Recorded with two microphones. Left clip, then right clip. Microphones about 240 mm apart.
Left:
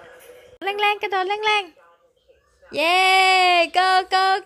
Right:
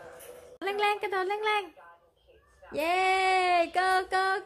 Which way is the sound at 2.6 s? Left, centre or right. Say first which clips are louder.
Left 9 dB; left.